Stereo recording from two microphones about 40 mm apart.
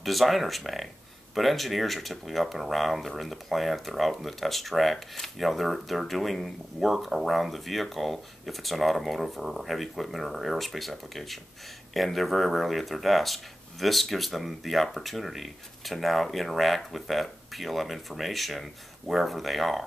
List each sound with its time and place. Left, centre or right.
0.0 s speech: centre